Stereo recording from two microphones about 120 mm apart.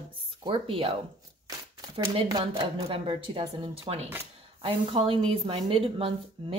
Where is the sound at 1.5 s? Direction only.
30° right (ahead or behind).